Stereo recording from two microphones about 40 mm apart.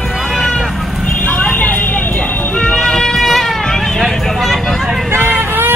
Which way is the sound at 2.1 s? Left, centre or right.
Left.